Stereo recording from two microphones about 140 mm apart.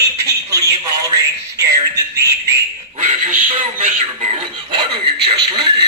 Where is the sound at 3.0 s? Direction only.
65° right (ahead or behind).